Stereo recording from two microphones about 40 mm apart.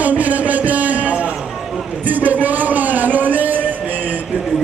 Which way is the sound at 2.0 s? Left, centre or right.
Right.